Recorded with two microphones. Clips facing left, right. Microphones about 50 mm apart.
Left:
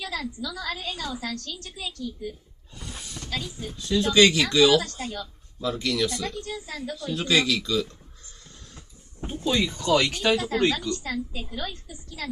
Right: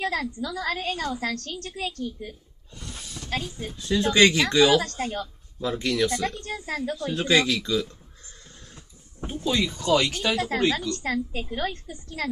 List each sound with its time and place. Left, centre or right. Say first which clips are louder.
0.0 s a woman's voice: right 4 dB; right
2.7 s a sound: even; centre
3.3 s a woman's voice: right 3 dB; right
5.7 s speech: right 2 dB; right
9.4 s speech: even; centre
10.9 s a woman's voice: right 2 dB; right